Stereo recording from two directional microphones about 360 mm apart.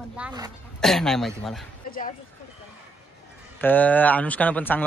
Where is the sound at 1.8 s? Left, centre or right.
Left.